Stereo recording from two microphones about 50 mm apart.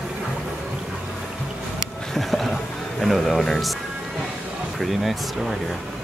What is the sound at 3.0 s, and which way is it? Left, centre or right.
Speech, centre.